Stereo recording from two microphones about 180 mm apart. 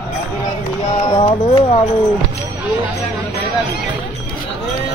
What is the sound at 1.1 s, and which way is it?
Music, 30° left (ahead or behind).